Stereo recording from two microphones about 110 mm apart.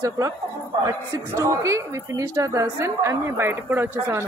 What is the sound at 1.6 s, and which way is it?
A woman's voice, 30° right (ahead or behind).